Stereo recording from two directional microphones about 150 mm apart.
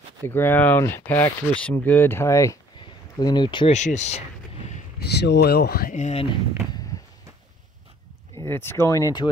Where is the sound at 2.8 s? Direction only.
30° left (ahead or behind).